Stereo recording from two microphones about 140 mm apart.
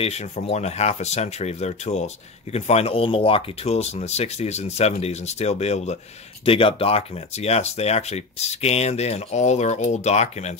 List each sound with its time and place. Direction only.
0.0 s speech: 50° left (ahead or behind)